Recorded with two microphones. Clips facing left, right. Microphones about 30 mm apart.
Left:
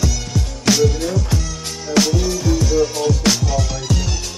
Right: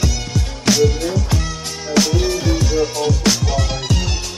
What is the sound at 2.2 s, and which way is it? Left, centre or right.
Music, right.